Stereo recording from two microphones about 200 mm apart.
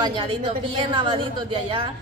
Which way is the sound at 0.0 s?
25° right (ahead or behind).